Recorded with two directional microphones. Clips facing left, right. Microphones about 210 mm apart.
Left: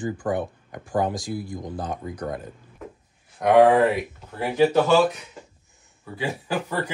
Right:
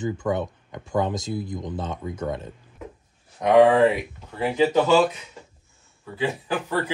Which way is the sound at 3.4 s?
10° left (ahead or behind).